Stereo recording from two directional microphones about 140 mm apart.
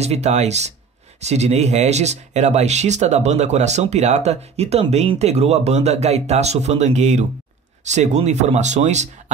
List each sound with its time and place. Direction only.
0.0 s speech: 50° right (ahead or behind)